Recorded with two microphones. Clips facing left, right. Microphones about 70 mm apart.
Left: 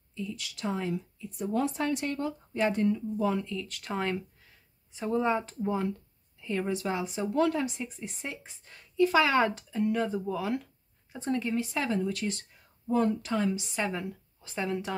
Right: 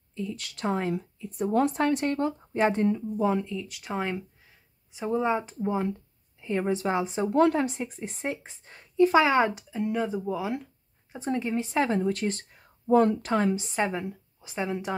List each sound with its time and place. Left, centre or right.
0.1 s a woman's voice: right
3.5 s speech: centre; by 12.9 s right
12.9 s a woman's voice: right
13.9 s speech: centre